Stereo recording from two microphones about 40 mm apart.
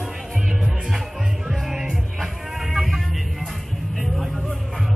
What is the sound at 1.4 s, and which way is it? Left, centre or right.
Music, centre.